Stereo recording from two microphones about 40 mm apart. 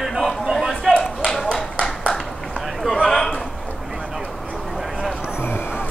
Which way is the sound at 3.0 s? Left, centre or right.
Centre.